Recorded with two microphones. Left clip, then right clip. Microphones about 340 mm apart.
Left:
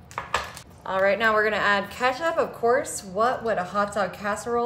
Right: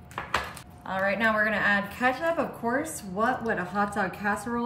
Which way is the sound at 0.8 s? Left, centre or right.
Left.